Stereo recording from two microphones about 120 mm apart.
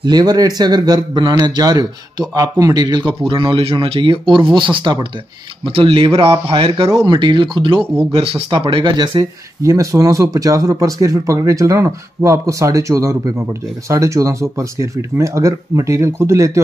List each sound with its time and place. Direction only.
0.0 s a man's voice: 35° right (ahead or behind)
5.7 s a man's voice: 55° right (ahead or behind)
8.1 s speech: 55° right (ahead or behind); by 9.2 s 40° right (ahead or behind)
9.6 s speech: 25° right (ahead or behind)